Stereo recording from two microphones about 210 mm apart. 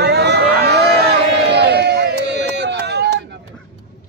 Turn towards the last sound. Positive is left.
turn(degrees=-50)  # may be behind; listen again after turning